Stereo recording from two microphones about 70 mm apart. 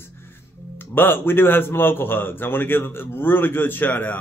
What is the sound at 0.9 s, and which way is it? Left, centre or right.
Speech, left.